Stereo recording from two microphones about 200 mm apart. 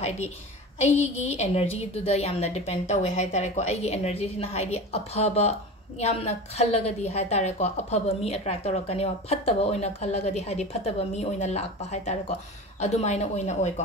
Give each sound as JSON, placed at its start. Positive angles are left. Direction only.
{"t": 0.7, "sound": "a woman's voice", "side_deg": 35}